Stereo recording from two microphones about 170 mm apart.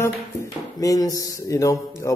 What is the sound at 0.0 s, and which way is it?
Music, 20° left (ahead or behind).